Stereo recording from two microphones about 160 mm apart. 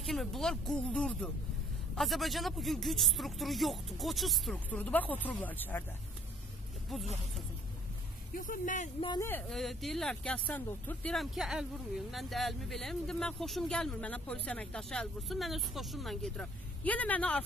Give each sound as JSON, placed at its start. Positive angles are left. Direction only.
{"t": 0.0, "sound": "speech", "side_deg": 0}
{"t": 8.4, "sound": "speech", "side_deg": 55}
{"t": 9.5, "sound": "speech", "side_deg": 0}